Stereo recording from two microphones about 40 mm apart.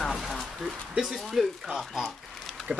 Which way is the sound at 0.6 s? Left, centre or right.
Centre.